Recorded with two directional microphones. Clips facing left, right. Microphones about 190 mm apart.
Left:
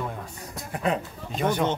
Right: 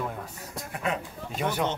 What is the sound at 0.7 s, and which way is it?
Speech, 35° left (ahead or behind).